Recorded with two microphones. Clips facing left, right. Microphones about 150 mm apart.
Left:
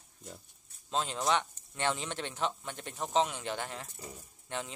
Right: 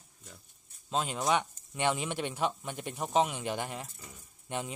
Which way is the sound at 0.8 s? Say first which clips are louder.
Right 1 dB; 5° right (ahead or behind).